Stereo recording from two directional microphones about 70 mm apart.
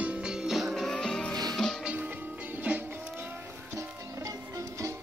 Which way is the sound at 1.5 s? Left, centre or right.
Centre.